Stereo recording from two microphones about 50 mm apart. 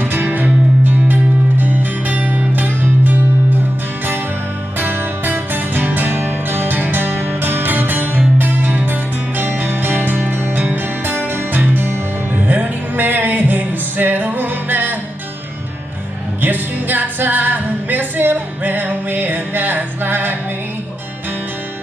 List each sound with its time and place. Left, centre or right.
0.0 s music: right
4.7 s music: right
16.3 s music: right